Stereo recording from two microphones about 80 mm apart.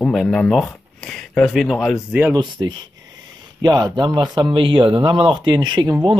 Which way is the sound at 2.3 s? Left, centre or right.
Right.